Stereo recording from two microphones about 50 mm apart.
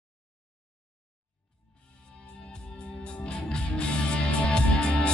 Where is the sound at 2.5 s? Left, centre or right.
Left.